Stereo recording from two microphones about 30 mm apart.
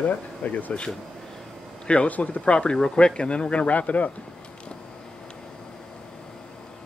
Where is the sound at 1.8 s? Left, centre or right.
Left.